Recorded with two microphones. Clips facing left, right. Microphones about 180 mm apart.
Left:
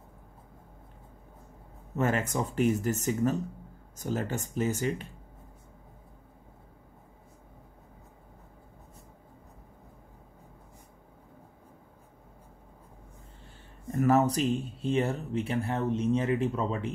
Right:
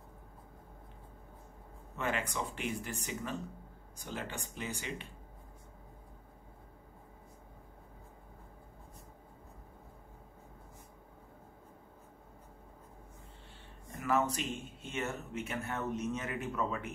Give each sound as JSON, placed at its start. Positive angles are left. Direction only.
{"t": 2.0, "sound": "speech", "side_deg": 45}
{"t": 13.9, "sound": "speech", "side_deg": 40}